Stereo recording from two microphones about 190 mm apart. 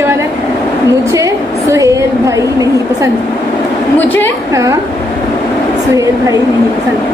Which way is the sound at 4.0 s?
10° left (ahead or behind).